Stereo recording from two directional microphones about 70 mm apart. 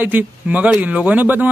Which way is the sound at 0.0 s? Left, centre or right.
Right.